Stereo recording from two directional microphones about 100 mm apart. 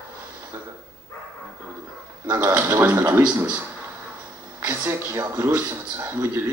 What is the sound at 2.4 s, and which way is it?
Speech, 25° right (ahead or behind).